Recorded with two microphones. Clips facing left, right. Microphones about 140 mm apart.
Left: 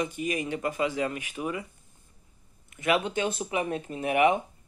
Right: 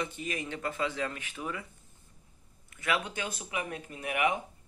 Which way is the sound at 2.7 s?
20° left (ahead or behind).